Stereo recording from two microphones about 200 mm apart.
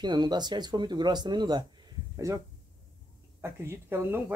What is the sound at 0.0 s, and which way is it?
Speech, 20° right (ahead or behind).